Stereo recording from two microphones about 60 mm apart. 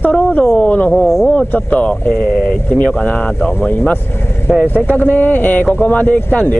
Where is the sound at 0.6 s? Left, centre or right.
Left.